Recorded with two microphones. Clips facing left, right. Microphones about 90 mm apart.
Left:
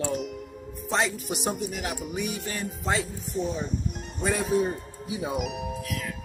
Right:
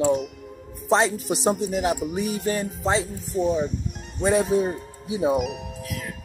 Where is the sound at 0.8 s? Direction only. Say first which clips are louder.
Right 7 dB; 35° right (ahead or behind).